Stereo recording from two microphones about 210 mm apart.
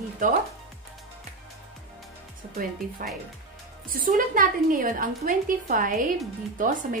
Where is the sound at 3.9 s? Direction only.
40° right (ahead or behind).